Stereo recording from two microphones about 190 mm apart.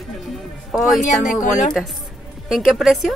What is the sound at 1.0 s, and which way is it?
Speech, 40° left (ahead or behind).